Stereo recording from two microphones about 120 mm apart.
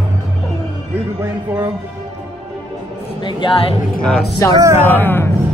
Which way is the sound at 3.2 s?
45° left (ahead or behind).